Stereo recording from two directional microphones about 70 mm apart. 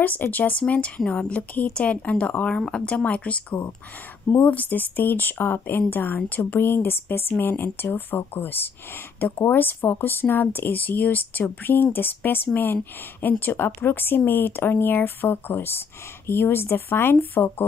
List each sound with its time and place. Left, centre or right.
0.0 s speech: left